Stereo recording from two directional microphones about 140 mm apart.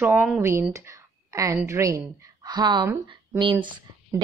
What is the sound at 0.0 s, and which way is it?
A woman's voice, 15° right (ahead or behind).